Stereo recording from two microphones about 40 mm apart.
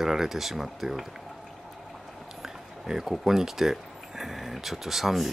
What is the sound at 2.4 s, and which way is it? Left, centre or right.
Speech, centre.